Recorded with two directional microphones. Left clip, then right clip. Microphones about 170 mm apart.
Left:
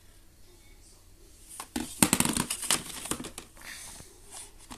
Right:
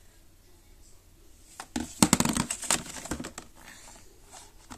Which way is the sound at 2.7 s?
25° right (ahead or behind).